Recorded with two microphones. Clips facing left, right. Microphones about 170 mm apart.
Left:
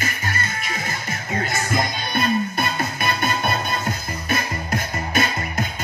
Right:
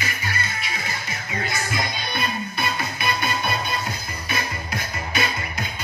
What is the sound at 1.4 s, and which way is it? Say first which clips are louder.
Music: left 4 dB; 45° left (ahead or behind).